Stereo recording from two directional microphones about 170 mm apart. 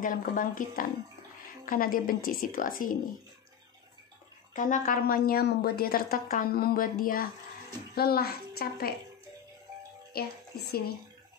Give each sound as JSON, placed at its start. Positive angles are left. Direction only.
{"t": 0.0, "sound": "a woman's voice", "side_deg": 50}
{"t": 4.6, "sound": "a woman's voice", "side_deg": 50}
{"t": 10.1, "sound": "a woman's voice", "side_deg": 65}